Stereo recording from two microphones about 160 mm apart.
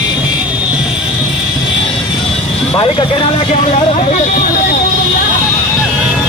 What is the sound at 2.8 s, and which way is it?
Speech, 30° left (ahead or behind).